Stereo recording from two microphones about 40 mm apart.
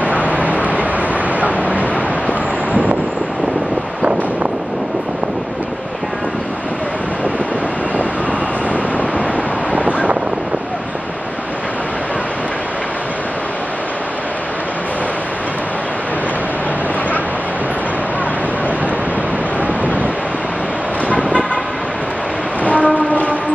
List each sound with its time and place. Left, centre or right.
0.0 s vehicle: right
9.8 s wind noise: right
21.1 s vehicle: left
22.7 s train: left